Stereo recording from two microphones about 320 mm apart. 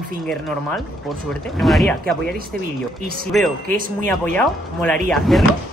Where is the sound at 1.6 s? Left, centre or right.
Centre.